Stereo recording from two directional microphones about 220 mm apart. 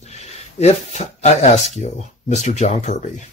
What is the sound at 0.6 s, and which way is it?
Speech, 30° left (ahead or behind).